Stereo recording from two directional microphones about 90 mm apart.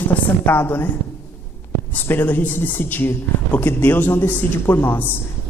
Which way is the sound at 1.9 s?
20° left (ahead or behind).